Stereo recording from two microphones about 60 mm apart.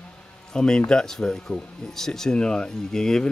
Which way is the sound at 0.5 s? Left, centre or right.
Centre.